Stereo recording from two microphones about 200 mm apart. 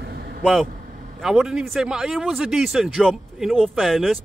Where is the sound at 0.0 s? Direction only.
55° right (ahead or behind).